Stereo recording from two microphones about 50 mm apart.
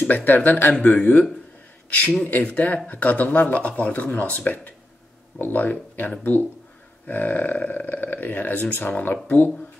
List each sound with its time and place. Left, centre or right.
0.1 s a man's voice: left